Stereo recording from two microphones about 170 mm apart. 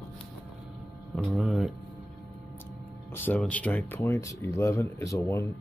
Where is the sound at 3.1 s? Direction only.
10° left (ahead or behind).